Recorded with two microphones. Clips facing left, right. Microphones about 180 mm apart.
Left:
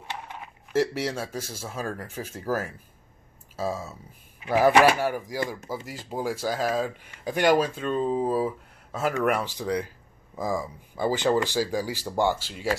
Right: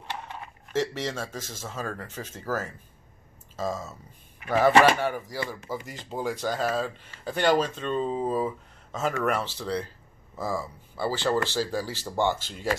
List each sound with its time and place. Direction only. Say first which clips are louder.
0.0 s speech: even; 10° left (ahead or behind)